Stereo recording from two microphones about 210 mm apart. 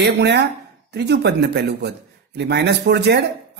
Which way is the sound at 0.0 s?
55° right (ahead or behind).